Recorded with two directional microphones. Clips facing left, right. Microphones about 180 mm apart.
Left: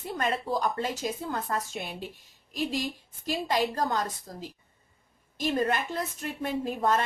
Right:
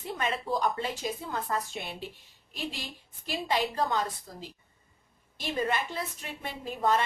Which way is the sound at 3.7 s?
45° left (ahead or behind).